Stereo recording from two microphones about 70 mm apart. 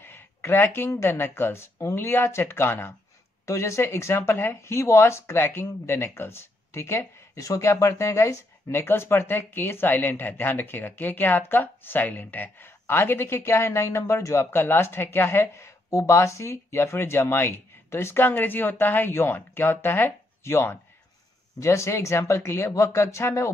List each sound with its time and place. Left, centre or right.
0.0 s a sound: left
0.8 s speech: left
1.1 s speech: left